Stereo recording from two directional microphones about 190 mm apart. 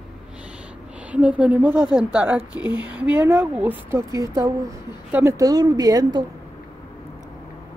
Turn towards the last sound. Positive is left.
turn(degrees=-20)  # may be behind; listen again after turning